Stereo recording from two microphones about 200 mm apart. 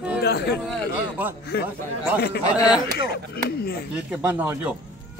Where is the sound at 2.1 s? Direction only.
55° left (ahead or behind).